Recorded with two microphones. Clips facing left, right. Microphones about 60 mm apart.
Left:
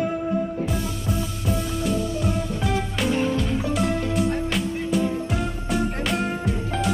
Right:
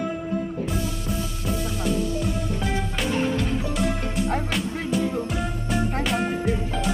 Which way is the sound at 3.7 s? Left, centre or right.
Centre.